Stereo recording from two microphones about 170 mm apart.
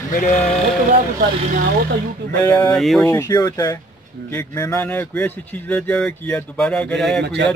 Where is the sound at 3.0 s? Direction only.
20° left (ahead or behind); by 7.2 s 5° left (ahead or behind).